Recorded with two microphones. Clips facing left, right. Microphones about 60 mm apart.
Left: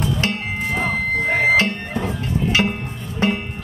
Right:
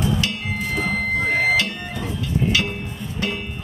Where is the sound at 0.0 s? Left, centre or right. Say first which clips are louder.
Left 1 dB; left.